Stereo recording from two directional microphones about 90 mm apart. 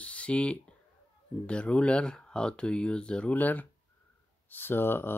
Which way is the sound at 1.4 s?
10° left (ahead or behind).